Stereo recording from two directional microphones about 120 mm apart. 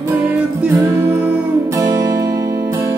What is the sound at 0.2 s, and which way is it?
Music, 10° right (ahead or behind).